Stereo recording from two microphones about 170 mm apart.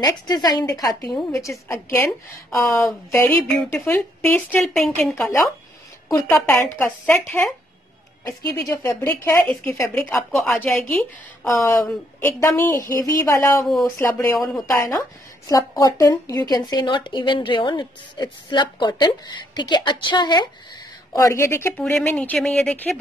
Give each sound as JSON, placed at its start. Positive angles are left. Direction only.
{"t": 0.3, "sound": "speech", "side_deg": 25}
{"t": 5.1, "sound": "speech", "side_deg": 15}
{"t": 8.6, "sound": "speech", "side_deg": 15}
{"t": 10.1, "sound": "speech", "side_deg": 0}